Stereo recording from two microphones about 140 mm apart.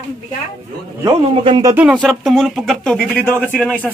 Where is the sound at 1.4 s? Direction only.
35° right (ahead or behind).